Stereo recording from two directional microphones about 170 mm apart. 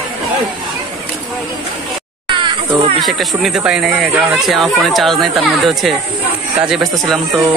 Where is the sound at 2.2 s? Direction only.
30° right (ahead or behind).